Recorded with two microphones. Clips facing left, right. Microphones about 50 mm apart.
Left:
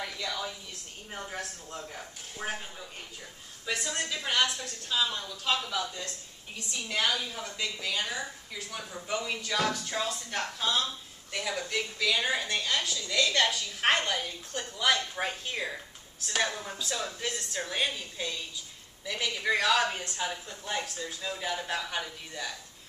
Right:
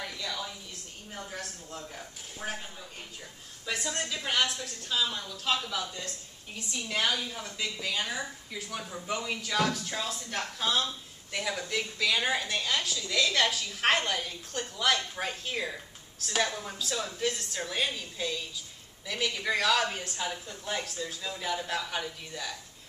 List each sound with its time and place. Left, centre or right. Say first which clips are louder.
1.1 s speech: left 2 dB; left
1.4 s a sound: left 1 dB; centre
3.6 s a woman's voice: left 1 dB; centre